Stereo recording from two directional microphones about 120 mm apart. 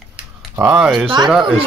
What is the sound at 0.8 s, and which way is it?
Speech, 5° right (ahead or behind).